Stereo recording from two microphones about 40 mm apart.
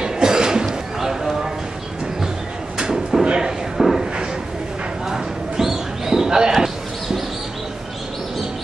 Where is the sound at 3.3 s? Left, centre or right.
Centre.